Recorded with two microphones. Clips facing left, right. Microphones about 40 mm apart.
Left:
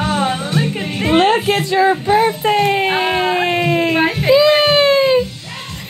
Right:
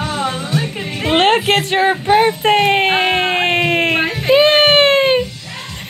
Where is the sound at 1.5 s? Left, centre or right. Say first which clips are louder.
Even; right.